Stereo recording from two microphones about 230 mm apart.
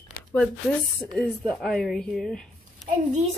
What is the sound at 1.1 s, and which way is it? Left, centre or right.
Speech, centre.